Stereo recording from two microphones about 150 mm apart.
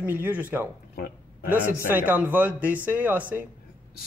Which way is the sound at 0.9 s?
90° left.